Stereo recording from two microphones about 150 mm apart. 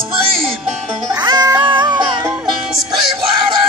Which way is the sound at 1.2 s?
25° right (ahead or behind).